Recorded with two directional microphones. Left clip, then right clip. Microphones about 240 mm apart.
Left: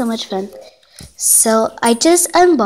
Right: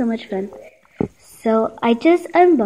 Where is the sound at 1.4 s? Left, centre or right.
Left.